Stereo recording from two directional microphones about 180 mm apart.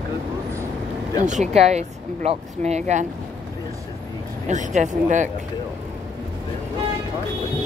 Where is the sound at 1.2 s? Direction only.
40° right (ahead or behind).